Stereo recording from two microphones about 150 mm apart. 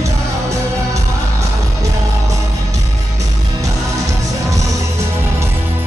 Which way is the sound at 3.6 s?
20° right (ahead or behind).